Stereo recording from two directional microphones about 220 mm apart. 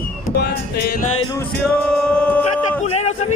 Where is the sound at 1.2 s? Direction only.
20° left (ahead or behind).